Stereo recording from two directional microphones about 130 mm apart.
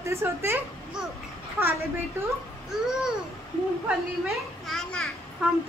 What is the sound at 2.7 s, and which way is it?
Speech, 5° right (ahead or behind).